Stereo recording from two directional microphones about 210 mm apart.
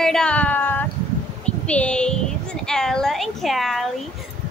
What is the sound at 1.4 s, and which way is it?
Child singing, 5° left (ahead or behind).